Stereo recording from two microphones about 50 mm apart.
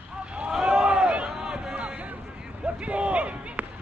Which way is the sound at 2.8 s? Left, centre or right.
Right.